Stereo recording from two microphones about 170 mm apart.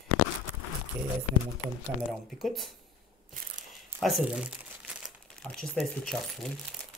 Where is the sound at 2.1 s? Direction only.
Centre (ahead or behind).